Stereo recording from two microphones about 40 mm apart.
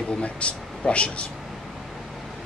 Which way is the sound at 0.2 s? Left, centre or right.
Left.